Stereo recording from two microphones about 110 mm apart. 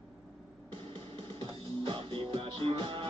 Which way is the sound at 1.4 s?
55° right (ahead or behind).